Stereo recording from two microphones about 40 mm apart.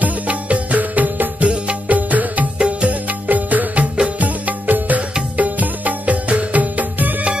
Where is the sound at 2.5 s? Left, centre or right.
Right.